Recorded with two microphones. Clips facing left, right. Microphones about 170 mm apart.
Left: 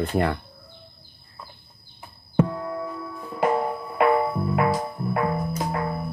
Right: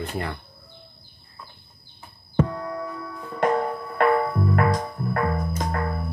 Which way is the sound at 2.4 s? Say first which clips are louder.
Left 1 dB; 5° left (ahead or behind).